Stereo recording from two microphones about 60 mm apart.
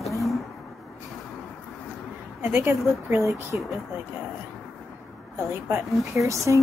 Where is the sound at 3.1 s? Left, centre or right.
Right.